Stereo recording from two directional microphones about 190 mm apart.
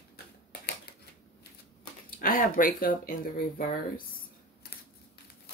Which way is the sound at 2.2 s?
45° left (ahead or behind).